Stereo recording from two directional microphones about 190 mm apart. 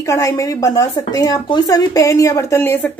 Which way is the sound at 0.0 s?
15° left (ahead or behind).